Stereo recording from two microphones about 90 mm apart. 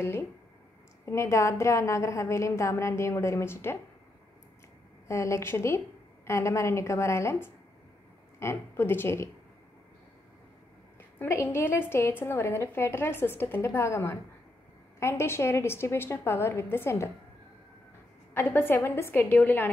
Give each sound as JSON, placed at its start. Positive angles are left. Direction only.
{"t": 1.1, "sound": "a woman's voice", "side_deg": 35}
{"t": 5.0, "sound": "a woman's voice", "side_deg": 35}
{"t": 11.1, "sound": "a woman's voice", "side_deg": 30}
{"t": 18.3, "sound": "a woman's voice", "side_deg": 25}